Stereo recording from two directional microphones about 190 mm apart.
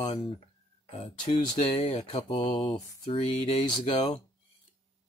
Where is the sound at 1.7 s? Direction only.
30° left (ahead or behind).